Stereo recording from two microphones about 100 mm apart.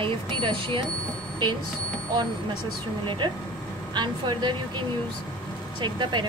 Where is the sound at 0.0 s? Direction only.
60° right (ahead or behind).